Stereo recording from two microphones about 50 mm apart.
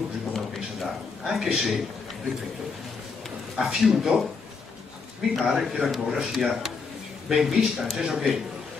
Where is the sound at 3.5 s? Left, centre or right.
Centre.